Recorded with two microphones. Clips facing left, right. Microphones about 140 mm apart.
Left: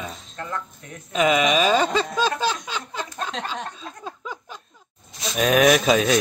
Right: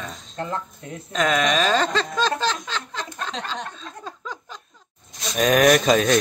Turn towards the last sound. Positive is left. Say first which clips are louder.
# right 1 dB
turn(degrees=0)  # may be behind; listen again after turning